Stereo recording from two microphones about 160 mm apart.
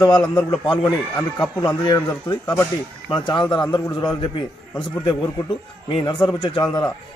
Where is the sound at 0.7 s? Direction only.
5° left (ahead or behind).